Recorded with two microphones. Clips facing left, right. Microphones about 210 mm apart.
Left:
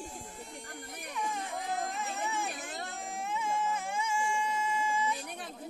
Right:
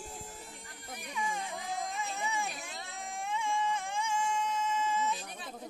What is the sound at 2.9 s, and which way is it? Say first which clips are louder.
Baby cry: right 2 dB; centre (ahead or behind).